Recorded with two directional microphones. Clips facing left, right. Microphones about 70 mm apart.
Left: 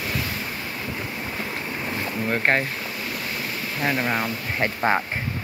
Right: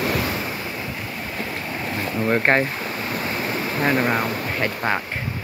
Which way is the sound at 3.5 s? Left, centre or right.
Right.